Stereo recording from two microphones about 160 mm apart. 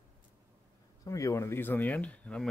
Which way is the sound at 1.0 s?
20° left (ahead or behind).